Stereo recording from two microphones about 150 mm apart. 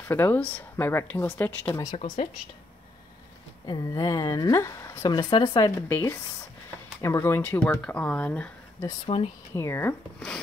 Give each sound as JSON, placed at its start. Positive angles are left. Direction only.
{"t": 0.1, "sound": "speech", "side_deg": 10}
{"t": 3.6, "sound": "speech", "side_deg": 25}
{"t": 5.8, "sound": "speech", "side_deg": 15}
{"t": 9.1, "sound": "speech", "side_deg": 40}
{"t": 9.6, "sound": "speech", "side_deg": 15}